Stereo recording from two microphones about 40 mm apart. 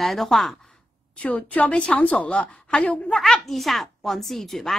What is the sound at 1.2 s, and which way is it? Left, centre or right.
Speech, left.